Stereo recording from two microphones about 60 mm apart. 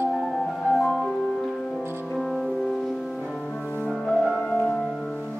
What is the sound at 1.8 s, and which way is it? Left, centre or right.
Music, right.